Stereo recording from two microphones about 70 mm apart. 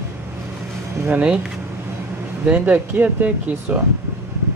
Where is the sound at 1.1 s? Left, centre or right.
Right.